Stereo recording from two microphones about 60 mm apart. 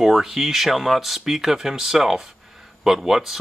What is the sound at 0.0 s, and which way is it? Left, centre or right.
Speech, centre.